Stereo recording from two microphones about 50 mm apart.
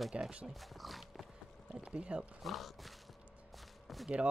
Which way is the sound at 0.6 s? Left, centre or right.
Centre.